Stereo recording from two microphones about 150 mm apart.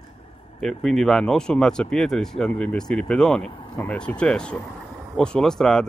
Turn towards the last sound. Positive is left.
turn(degrees=5)  # may be behind; listen again after turning